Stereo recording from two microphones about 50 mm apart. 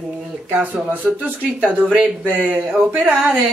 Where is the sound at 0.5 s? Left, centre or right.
Right.